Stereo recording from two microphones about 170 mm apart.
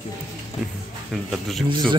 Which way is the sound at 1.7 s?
30° right (ahead or behind).